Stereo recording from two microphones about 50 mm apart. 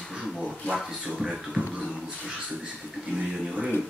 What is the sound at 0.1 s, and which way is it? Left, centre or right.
Speech, centre.